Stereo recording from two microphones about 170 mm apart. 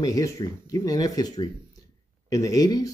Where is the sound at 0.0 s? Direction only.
20° left (ahead or behind).